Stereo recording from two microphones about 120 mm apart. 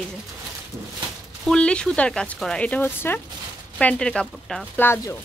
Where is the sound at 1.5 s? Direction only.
10° left (ahead or behind).